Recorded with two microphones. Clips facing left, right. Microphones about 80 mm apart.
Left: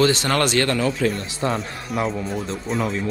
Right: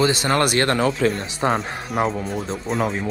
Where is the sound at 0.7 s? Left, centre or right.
Right.